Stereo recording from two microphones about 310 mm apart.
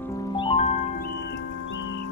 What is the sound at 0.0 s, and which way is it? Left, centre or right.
Music, centre.